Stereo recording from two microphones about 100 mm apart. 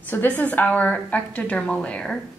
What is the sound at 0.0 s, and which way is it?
A woman's voice, 20° left (ahead or behind).